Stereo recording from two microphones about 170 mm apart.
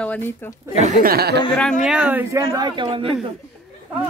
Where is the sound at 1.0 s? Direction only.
70° right (ahead or behind).